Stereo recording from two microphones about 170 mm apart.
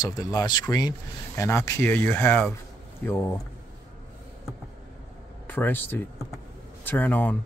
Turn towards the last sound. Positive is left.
turn(degrees=10)  # may be behind; listen again after turning